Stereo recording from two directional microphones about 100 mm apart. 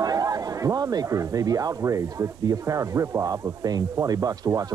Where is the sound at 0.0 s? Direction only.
40° right (ahead or behind).